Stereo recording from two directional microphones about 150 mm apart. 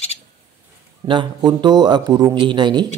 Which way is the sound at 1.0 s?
30° right (ahead or behind).